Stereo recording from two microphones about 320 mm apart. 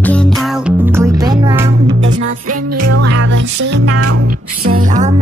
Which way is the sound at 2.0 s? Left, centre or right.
Right.